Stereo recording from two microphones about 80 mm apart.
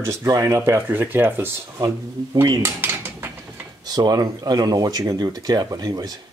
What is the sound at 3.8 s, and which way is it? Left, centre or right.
Speech, right.